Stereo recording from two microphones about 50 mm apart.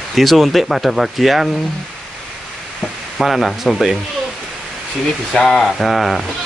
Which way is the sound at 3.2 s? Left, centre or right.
Centre.